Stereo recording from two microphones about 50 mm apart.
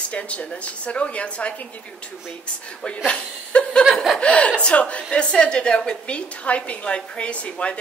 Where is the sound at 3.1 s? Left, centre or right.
Left.